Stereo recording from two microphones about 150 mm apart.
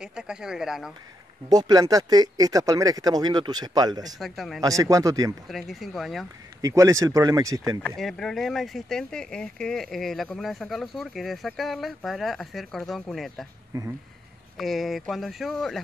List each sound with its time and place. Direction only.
0.0 s speech: 5° right (ahead or behind)
1.5 s speech: 25° right (ahead or behind)
4.2 s speech: centre (ahead or behind)
4.6 s speech: 20° right (ahead or behind)
5.5 s speech: centre (ahead or behind)
6.6 s speech: 20° right (ahead or behind)
8.0 s speech: 5° left (ahead or behind)
13.7 s speech: 20° right (ahead or behind)
14.6 s speech: centre (ahead or behind)